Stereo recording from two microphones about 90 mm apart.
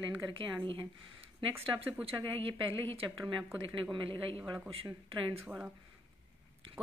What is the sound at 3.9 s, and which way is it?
Speech, 75° right (ahead or behind).